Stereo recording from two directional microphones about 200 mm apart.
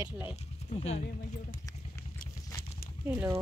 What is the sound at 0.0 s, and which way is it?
Speech, 10° right (ahead or behind).